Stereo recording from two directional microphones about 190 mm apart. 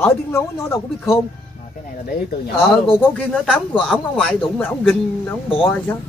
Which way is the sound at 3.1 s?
5° left (ahead or behind).